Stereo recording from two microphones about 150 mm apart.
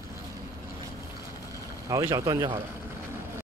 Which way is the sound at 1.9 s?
20° right (ahead or behind).